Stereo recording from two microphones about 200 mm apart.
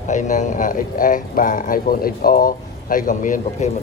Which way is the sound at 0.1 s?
40° left (ahead or behind).